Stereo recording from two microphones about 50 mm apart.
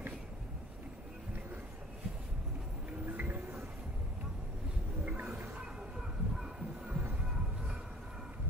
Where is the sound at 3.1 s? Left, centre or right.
Right.